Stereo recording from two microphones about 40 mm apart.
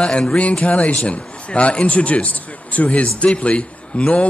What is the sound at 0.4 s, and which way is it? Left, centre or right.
Speech, left.